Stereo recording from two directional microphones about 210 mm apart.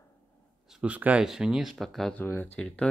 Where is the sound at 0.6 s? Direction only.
5° right (ahead or behind).